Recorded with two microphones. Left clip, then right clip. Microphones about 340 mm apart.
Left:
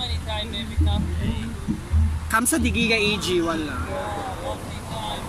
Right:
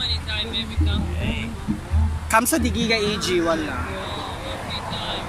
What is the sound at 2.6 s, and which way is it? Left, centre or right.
Speech, centre.